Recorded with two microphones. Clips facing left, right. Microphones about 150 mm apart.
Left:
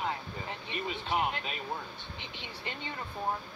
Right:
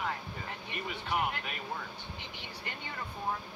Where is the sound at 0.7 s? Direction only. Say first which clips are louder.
Left 2 dB; 20° left (ahead or behind).